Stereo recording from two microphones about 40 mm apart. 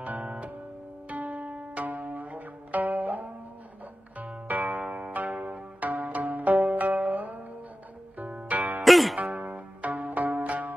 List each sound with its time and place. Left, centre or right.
0.0 s music: right
1.0 s zither: right
4.5 s music: right
8.8 s music: centre
9.2 s zither: right